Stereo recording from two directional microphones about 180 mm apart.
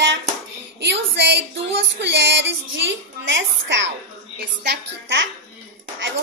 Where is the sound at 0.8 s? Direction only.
70° right (ahead or behind).